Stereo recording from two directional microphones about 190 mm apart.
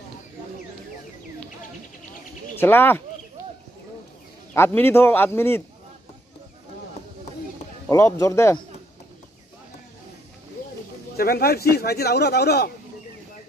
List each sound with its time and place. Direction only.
2.6 s speech: 10° left (ahead or behind)
4.6 s speech: 10° left (ahead or behind)
7.9 s speech: 15° left (ahead or behind)
11.1 s speech: 55° left (ahead or behind)